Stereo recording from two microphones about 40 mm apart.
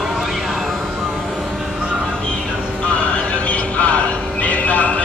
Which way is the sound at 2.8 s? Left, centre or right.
Left.